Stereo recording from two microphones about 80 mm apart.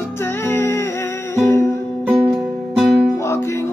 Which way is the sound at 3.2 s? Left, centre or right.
Left.